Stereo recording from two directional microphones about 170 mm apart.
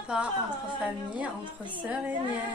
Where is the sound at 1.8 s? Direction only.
10° right (ahead or behind).